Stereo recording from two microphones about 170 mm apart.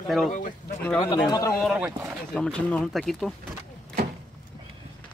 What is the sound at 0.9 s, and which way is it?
Speech, 20° left (ahead or behind).